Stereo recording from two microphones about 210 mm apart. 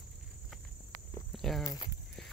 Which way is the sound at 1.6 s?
20° left (ahead or behind).